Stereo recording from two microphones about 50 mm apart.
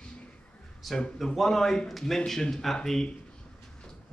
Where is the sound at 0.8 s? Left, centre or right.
Centre.